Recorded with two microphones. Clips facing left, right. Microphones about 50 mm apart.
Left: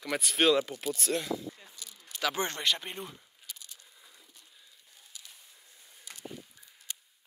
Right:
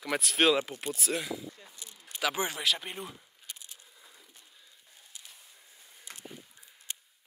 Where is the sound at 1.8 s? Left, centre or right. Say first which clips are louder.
Even; right.